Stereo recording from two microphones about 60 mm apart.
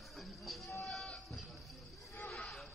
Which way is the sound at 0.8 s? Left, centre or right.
Centre.